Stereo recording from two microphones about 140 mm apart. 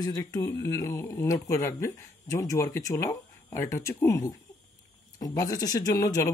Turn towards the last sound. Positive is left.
turn(degrees=20)  # may be behind; listen again after turning